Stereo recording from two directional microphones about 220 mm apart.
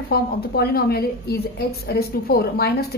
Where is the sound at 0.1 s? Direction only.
45° left (ahead or behind).